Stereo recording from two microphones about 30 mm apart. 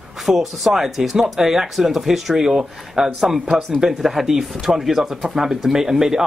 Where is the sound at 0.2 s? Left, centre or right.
Centre.